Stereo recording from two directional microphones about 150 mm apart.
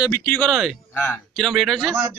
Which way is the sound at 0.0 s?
20° left (ahead or behind).